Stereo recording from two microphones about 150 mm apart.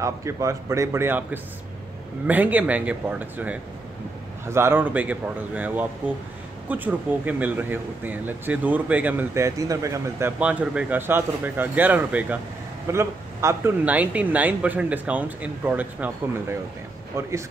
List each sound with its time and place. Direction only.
0.0 s speech: 20° right (ahead or behind)